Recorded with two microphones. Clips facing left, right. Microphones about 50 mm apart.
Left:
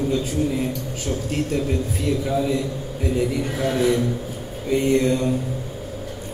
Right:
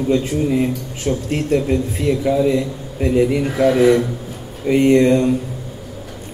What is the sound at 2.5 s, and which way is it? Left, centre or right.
A man's voice, right.